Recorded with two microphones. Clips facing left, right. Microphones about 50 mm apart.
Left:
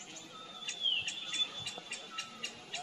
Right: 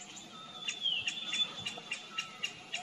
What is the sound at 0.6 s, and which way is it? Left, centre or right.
Bird, right.